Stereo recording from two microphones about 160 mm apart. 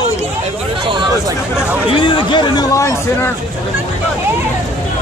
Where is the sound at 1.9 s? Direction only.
30° left (ahead or behind).